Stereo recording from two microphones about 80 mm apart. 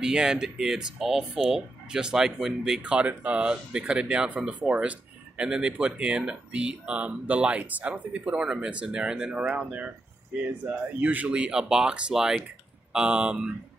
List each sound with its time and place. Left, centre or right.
0.0 s speech: centre